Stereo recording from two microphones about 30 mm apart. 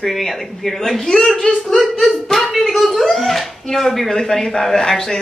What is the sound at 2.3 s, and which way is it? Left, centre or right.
A woman's voice, centre.